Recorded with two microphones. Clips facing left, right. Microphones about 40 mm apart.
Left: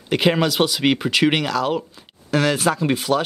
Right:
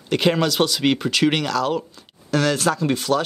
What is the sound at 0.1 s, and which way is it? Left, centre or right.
Speech, centre.